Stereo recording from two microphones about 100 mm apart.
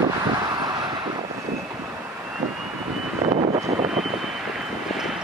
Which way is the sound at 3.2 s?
90° right.